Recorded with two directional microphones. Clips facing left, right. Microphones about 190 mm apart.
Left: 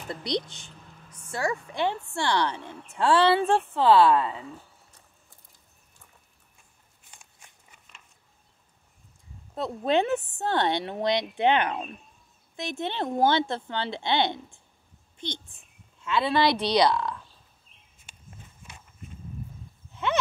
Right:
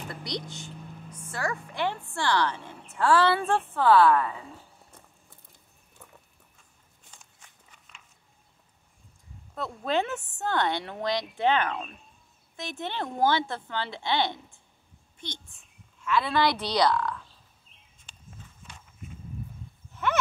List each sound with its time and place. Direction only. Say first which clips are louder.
0.1 s a woman's voice: left 8 dB; 20° left (ahead or behind)
7.3 s a sound: left 1 dB; 10° left (ahead or behind)
9.6 s a woman's voice: left 4 dB; 20° left (ahead or behind)
16.0 s a woman's voice: left 1 dB; 25° left (ahead or behind)
18.1 s horse: even; 5° left (ahead or behind)